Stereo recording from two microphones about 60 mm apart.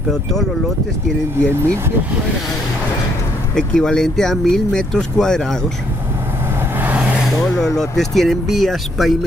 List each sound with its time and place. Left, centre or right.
0.1 s speech: centre
1.5 s speech: right
3.5 s speech: centre
7.6 s speech: centre